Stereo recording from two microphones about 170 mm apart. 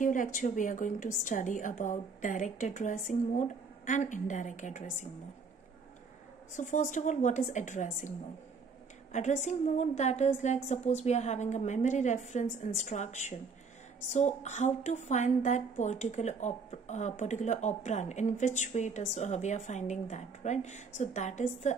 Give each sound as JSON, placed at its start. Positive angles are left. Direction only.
{"t": 0.0, "sound": "a woman's voice", "side_deg": 50}
{"t": 6.5, "sound": "a woman's voice", "side_deg": 45}
{"t": 9.1, "sound": "a woman's voice", "side_deg": 45}